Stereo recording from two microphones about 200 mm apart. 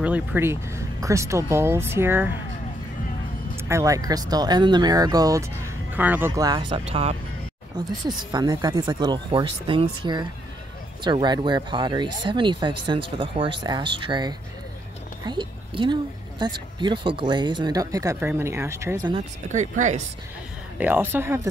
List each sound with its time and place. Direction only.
0.0 s speech: 5° right (ahead or behind)
3.6 s speech: 15° right (ahead or behind); by 7.2 s 30° right (ahead or behind)
8.3 s speech: 20° right (ahead or behind)
19.1 s speech: 35° right (ahead or behind)
20.7 s speech: 10° right (ahead or behind)